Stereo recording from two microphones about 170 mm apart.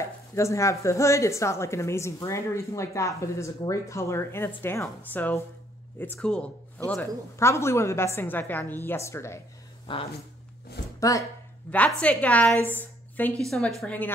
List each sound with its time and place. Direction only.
0.0 s a woman's voice: 15° left (ahead or behind)
9.9 s speech: 30° left (ahead or behind)
11.0 s speech: 20° left (ahead or behind)
11.7 s speech: 10° left (ahead or behind)
12.7 s a sound: 10° left (ahead or behind)
13.5 s a woman's voice: centre (ahead or behind)